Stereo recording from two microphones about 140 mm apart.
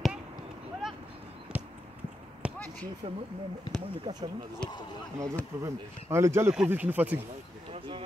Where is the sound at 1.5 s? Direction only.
5° right (ahead or behind).